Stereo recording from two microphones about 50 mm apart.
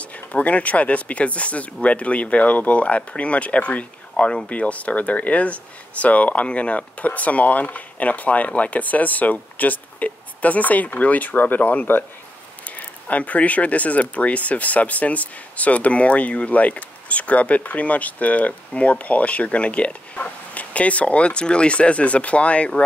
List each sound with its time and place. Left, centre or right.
0.0 s speech: left